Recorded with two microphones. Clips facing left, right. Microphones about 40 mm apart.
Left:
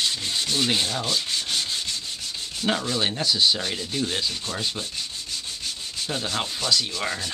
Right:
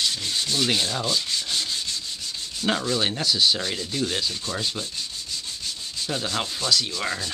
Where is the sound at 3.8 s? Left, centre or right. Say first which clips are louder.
Even; centre.